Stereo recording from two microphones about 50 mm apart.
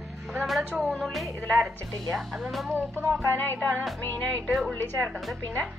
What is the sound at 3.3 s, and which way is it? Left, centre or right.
Music, left.